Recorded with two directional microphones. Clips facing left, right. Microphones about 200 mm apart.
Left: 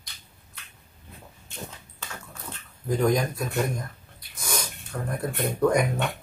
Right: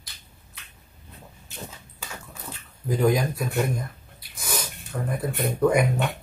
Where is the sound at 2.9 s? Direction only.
5° right (ahead or behind).